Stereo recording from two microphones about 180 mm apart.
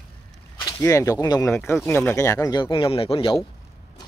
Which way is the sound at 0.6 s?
20° left (ahead or behind).